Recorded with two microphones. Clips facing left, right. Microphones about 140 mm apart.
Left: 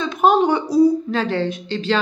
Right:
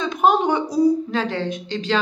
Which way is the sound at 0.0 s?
15° right (ahead or behind).